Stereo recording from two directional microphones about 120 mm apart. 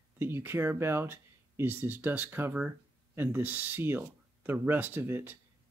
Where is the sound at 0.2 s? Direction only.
20° right (ahead or behind).